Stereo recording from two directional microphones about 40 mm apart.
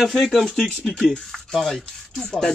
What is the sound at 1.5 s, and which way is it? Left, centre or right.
Speech, centre.